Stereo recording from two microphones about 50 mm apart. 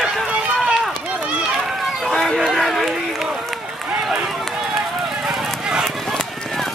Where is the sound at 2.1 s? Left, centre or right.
Centre.